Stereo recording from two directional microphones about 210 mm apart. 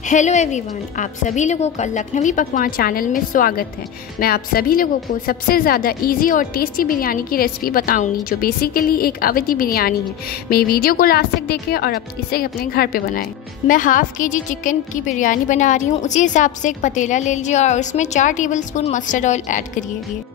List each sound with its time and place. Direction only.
0.0 s a woman's voice: 35° left (ahead or behind)